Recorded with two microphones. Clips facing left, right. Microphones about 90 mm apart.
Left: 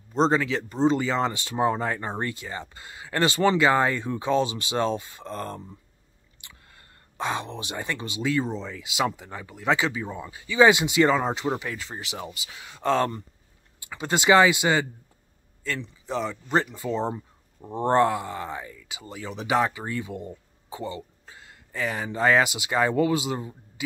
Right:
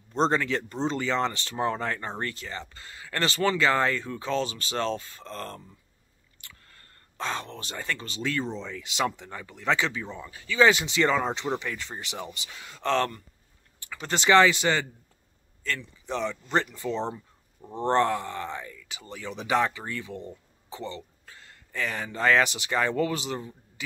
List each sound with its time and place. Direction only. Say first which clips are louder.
0.1 s speech: left 2 dB; 5° left (ahead or behind)